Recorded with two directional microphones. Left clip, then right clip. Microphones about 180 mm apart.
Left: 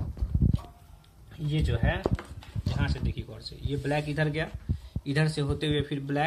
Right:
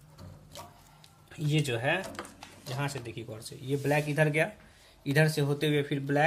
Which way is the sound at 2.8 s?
45° right (ahead or behind).